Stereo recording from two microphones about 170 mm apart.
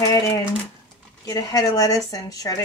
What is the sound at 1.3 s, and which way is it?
Speech, 20° left (ahead or behind).